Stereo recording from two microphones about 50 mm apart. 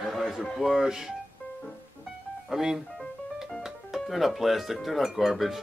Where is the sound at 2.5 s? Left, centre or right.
Centre.